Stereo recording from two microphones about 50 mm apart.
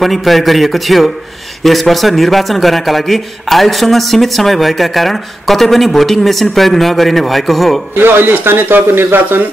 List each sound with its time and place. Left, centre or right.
0.0 s a man's voice: centre
8.0 s speech: right